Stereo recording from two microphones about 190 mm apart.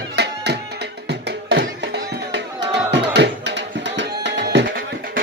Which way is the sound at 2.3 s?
65° right (ahead or behind).